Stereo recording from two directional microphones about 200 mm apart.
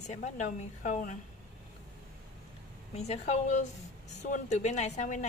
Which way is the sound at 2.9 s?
35° left (ahead or behind).